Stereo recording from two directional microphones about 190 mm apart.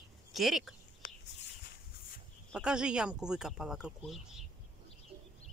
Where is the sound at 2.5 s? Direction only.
5° right (ahead or behind).